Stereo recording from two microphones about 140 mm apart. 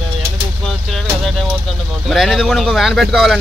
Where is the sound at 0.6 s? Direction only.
Centre (ahead or behind).